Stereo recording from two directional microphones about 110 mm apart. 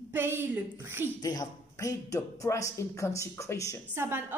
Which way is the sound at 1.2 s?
35° left (ahead or behind).